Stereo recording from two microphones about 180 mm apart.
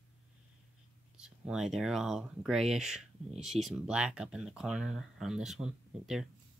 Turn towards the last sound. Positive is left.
turn(degrees=0)  # may be behind; listen again after turning